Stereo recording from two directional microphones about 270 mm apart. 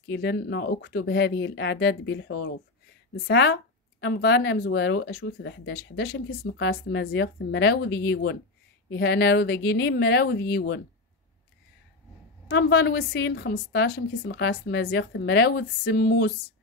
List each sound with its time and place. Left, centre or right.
0.1 s speech: left
12.4 s speech: left